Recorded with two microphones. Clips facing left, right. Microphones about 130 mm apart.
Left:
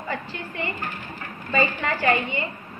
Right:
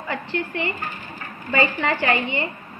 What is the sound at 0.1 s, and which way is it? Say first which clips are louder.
A woman's voice: right 6 dB; 65° right (ahead or behind).